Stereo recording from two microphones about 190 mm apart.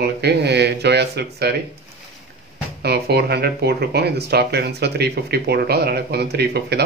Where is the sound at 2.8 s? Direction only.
60° right (ahead or behind).